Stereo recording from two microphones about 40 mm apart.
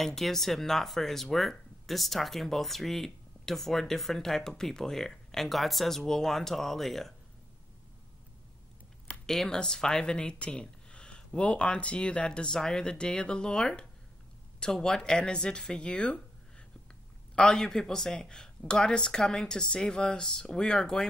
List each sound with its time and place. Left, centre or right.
0.0 s speech: centre
9.2 s speech: centre
17.5 s speech: centre